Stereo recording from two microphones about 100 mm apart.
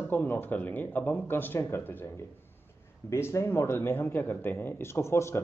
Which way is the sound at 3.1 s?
25° left (ahead or behind).